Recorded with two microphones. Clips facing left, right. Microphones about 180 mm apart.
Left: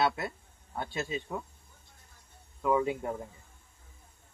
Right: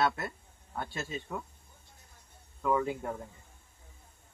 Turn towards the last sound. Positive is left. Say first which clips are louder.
# left 2 dB
turn(degrees=15)  # may be behind; listen again after turning